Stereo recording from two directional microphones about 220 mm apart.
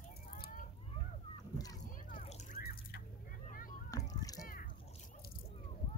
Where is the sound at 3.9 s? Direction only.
15° left (ahead or behind).